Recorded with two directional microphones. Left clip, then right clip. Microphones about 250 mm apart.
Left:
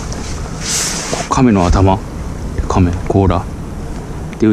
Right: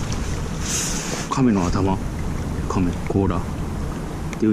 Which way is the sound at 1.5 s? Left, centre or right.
Left.